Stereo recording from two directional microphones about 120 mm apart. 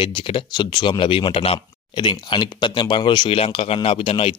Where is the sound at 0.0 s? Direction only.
45° left (ahead or behind).